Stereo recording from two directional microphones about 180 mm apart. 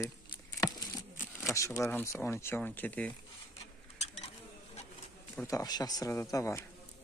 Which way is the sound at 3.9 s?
40° left (ahead or behind).